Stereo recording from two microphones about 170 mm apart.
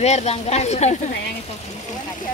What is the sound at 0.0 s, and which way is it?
Speech, 40° left (ahead or behind).